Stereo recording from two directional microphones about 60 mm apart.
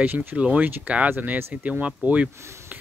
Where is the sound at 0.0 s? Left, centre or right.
Right.